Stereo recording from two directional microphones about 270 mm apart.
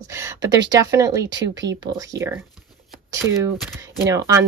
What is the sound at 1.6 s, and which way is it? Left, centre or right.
Speech, right.